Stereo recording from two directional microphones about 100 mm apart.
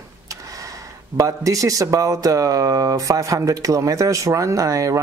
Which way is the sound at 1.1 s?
35° right (ahead or behind).